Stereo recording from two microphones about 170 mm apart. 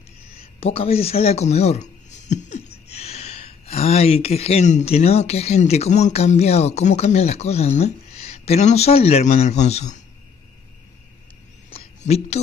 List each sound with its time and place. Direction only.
0.4 s speech: 35° left (ahead or behind)
12.0 s a woman's voice: 40° left (ahead or behind)